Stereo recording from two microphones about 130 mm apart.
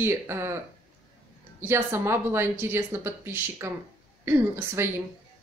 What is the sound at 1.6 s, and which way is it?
Speech, 20° right (ahead or behind).